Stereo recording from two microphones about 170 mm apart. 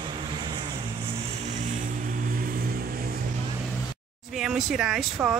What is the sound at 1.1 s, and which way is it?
Vehicle, 45° right (ahead or behind).